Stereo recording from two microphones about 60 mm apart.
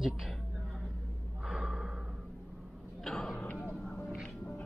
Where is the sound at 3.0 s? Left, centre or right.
Centre.